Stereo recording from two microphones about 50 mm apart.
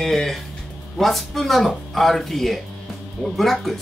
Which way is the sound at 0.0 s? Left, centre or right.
Centre.